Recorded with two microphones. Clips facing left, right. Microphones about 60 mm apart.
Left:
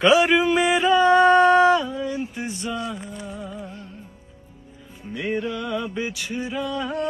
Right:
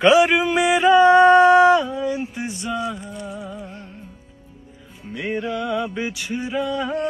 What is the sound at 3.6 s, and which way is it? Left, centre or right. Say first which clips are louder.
Music: right 1 dB; right.